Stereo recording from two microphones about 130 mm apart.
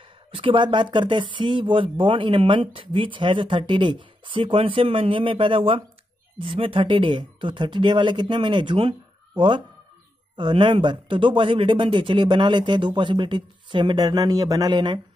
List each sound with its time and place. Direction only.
0.3 s speech: 40° right (ahead or behind)
10.3 s speech: 35° right (ahead or behind)